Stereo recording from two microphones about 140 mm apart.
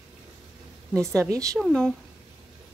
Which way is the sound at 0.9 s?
Centre (ahead or behind).